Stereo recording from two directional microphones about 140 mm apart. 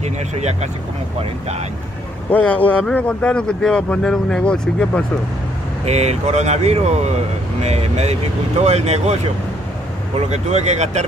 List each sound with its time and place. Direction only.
0.0 s speech: 50° right (ahead or behind)
2.3 s speech: 10° left (ahead or behind)
5.9 s speech: 50° right (ahead or behind)
10.2 s speech: 55° right (ahead or behind)